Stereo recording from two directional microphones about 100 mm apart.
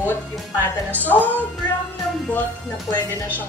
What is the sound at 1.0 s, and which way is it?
Speech, 15° left (ahead or behind).